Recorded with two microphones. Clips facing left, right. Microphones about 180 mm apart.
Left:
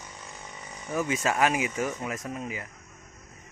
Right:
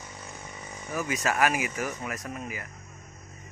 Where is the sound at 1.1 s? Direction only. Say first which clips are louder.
Even; 25° left (ahead or behind).